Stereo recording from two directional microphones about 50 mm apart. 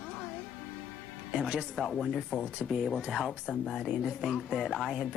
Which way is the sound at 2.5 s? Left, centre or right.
Centre.